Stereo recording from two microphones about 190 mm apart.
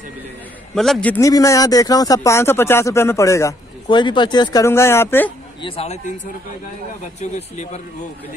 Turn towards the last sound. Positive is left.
turn(degrees=35)  # may be behind; listen again after turning